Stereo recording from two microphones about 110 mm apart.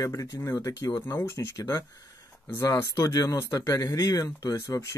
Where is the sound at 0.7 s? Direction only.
40° left (ahead or behind).